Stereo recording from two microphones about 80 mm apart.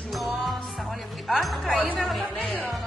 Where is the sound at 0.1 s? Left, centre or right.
Centre.